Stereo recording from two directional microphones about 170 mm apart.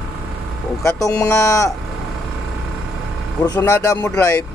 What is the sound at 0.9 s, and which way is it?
Speech, 20° left (ahead or behind).